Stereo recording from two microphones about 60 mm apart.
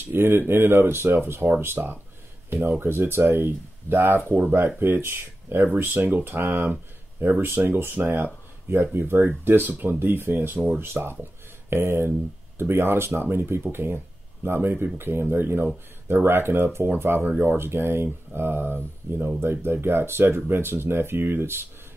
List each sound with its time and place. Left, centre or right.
0.0 s speech: right